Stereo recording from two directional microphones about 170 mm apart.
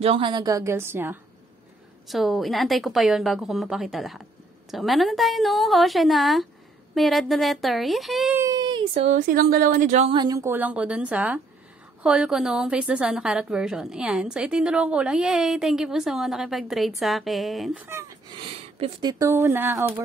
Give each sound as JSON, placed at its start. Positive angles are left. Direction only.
{"t": 0.0, "sound": "a woman's voice", "side_deg": -30}
{"t": 2.0, "sound": "a woman's voice", "side_deg": 0}
{"t": 8.4, "sound": "a sound", "side_deg": -20}
{"t": 9.0, "sound": "a woman's voice", "side_deg": -50}
{"t": 10.1, "sound": "a woman's voice", "side_deg": -20}
{"t": 18.3, "sound": "speech", "side_deg": -25}